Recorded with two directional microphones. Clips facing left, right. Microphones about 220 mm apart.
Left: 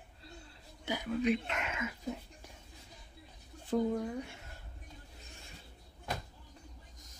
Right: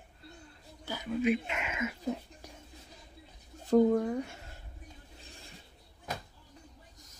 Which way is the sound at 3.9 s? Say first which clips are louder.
Right 6 dB; 55° right (ahead or behind).